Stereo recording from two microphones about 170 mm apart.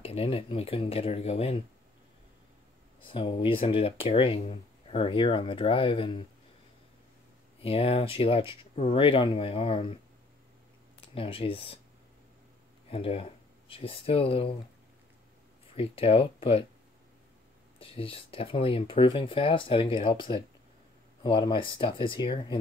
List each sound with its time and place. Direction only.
0.0 s speech: 35° left (ahead or behind)
3.0 s speech: 30° left (ahead or behind)
7.6 s speech: 35° left (ahead or behind)
11.1 s speech: 30° left (ahead or behind)
12.9 s speech: 35° left (ahead or behind)
15.7 s speech: 35° left (ahead or behind)
17.7 s speech: 35° left (ahead or behind)